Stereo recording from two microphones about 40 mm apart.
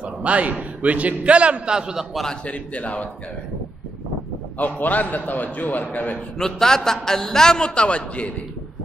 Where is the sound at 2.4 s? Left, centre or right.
Left.